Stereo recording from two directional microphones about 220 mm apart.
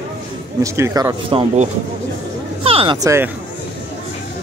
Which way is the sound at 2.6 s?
25° right (ahead or behind).